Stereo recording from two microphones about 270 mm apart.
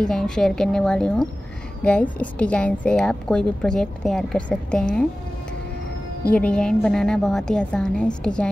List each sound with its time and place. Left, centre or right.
0.0 s a woman's voice: centre
6.3 s a woman's voice: centre